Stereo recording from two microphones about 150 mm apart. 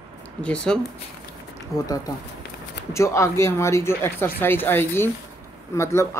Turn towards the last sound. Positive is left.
turn(degrees=20)  # may be behind; listen again after turning